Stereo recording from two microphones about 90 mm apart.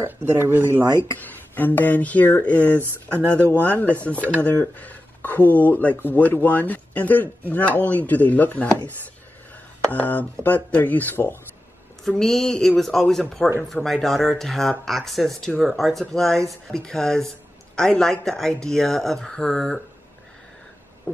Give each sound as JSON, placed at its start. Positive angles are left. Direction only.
{"t": 0.0, "sound": "speech", "side_deg": -25}
{"t": 1.1, "sound": "speech", "side_deg": 20}
{"t": 9.9, "sound": "speech", "side_deg": 15}
{"t": 12.1, "sound": "speech", "side_deg": 5}